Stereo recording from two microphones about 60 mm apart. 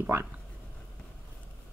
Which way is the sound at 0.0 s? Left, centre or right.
Right.